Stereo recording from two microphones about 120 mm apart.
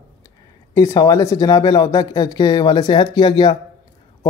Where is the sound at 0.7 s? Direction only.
30° left (ahead or behind).